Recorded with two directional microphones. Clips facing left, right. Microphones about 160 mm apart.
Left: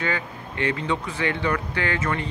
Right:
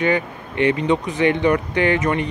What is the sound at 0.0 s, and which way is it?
Speech, 20° right (ahead or behind).